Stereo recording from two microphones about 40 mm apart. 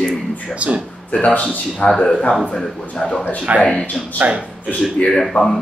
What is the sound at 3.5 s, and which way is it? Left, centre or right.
Speech, right.